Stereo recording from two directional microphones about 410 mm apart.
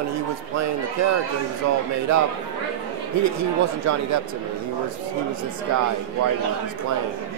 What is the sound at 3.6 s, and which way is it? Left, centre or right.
Speech, right.